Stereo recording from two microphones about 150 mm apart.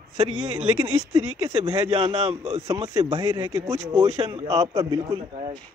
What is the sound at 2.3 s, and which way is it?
Speech, 45° right (ahead or behind).